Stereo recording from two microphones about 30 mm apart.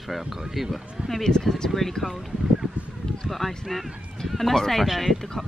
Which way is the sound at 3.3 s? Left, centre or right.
Centre.